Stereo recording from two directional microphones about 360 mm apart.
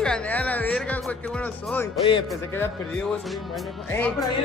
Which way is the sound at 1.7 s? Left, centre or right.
Centre.